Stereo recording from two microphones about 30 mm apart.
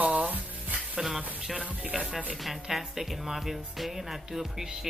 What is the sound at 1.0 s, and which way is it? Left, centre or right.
Speech, centre.